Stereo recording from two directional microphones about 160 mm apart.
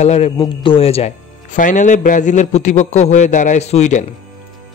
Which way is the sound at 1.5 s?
55° left (ahead or behind).